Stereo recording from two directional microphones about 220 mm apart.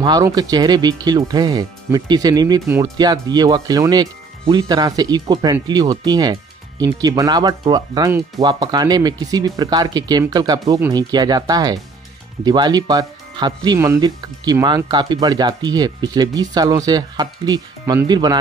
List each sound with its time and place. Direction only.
0.0 s speech: 15° right (ahead or behind)